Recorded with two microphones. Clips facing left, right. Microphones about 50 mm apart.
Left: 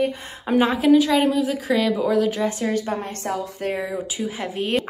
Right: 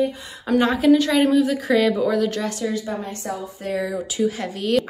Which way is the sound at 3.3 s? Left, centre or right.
Left.